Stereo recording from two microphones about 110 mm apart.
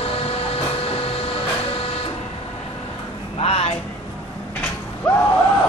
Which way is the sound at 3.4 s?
65° left (ahead or behind).